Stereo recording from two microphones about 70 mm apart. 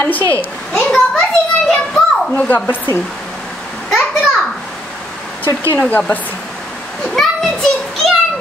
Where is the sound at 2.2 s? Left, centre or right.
Left.